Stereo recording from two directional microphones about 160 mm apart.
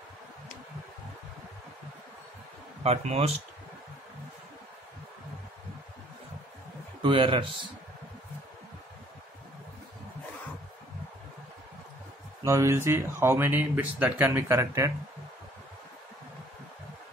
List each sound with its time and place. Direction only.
2.8 s speech: 40° right (ahead or behind)
7.0 s speech: 35° right (ahead or behind)
12.4 s speech: 20° right (ahead or behind)